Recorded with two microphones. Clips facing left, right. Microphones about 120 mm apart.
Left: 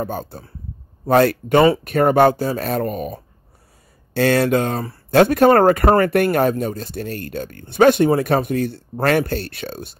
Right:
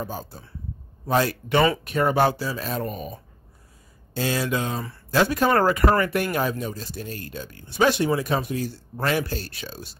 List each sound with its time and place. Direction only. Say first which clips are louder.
0.0 s speech: left 7 dB; 55° left (ahead or behind)